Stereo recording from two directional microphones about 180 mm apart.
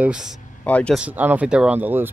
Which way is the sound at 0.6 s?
5° left (ahead or behind).